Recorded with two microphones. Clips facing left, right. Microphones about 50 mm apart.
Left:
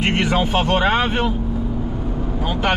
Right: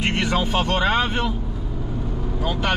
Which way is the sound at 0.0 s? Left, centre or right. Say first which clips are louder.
Left 3 dB; centre.